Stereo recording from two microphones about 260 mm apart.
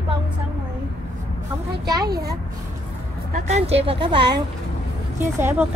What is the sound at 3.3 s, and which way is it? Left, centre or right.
Speech, right.